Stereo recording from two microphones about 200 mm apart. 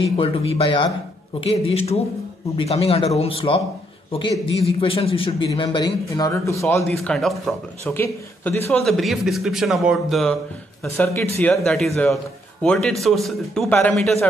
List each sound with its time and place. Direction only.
0.0 s a man's voice: 30° left (ahead or behind)
4.6 s a man's voice: 30° left (ahead or behind)
6.8 s a man's voice: centre (ahead or behind)
7.8 s a man's voice: 10° left (ahead or behind)
11.4 s a man's voice: centre (ahead or behind)